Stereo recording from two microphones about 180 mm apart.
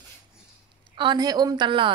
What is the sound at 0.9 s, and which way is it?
A woman's voice, 25° right (ahead or behind).